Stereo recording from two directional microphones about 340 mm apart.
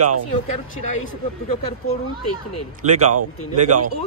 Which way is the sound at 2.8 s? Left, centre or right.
Right.